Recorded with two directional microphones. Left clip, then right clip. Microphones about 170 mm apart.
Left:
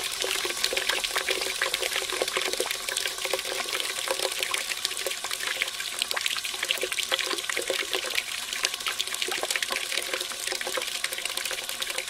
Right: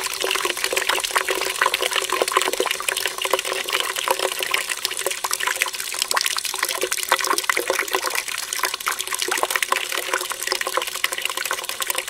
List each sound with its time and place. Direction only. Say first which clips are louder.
0.2 s water: right 6 dB; 30° right (ahead or behind)
6.1 s water: right 9 dB; 20° right (ahead or behind)